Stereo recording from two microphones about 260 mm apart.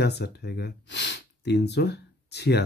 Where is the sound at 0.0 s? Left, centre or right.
Left.